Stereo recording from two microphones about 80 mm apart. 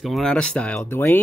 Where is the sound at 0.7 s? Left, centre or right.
Left.